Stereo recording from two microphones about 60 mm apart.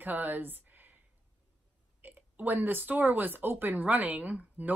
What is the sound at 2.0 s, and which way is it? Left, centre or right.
A woman's voice, right.